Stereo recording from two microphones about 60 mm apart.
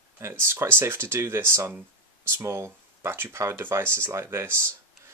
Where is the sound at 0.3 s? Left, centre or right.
Right.